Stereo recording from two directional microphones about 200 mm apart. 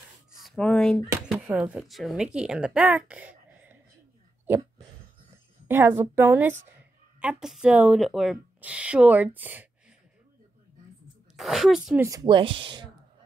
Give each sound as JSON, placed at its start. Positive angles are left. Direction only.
{"t": 0.4, "sound": "a sound", "side_deg": 0}
{"t": 1.3, "sound": "a woman's voice", "side_deg": -5}
{"t": 5.7, "sound": "a woman's voice", "side_deg": -10}
{"t": 11.3, "sound": "a woman's voice", "side_deg": 0}
{"t": 12.0, "sound": "speech", "side_deg": -20}